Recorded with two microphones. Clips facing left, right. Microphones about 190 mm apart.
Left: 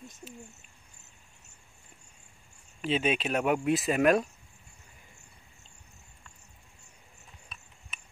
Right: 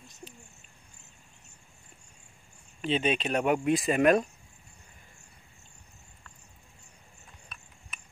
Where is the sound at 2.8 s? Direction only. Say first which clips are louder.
Even; 5° left (ahead or behind).